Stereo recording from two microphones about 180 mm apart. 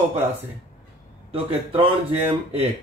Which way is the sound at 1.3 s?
35° right (ahead or behind).